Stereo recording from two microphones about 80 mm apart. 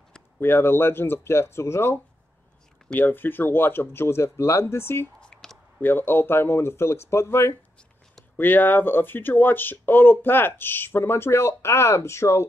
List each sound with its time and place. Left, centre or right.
0.4 s speech: left
5.2 s a sound: centre
5.8 s speech: left